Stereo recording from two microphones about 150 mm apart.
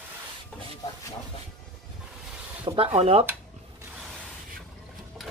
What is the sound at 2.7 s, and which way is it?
Speech, 45° right (ahead or behind).